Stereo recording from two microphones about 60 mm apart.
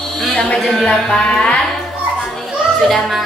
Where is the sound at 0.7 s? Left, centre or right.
Centre.